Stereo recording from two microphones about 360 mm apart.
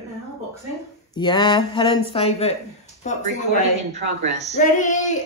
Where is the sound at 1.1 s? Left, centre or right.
Centre.